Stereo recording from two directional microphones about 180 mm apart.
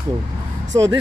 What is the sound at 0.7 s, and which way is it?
Speech, 15° right (ahead or behind).